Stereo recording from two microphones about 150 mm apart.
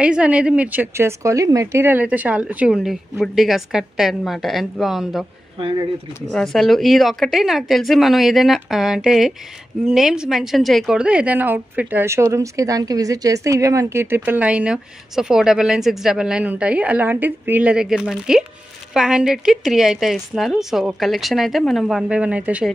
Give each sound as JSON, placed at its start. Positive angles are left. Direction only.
{"t": 0.0, "sound": "a woman's voice", "side_deg": -10}
{"t": 5.6, "sound": "speech", "side_deg": -35}
{"t": 6.3, "sound": "a woman's voice", "side_deg": 0}